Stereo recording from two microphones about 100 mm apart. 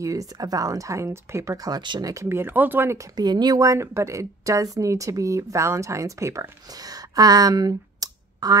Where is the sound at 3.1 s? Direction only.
45° right (ahead or behind).